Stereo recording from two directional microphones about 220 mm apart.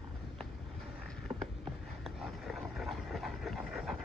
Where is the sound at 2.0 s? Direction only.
Centre (ahead or behind).